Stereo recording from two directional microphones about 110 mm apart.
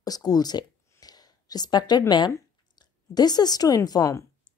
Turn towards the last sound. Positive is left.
turn(degrees=35)  # may be behind; listen again after turning